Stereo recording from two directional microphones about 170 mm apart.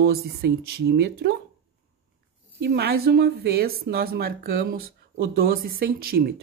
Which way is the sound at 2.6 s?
70° right (ahead or behind).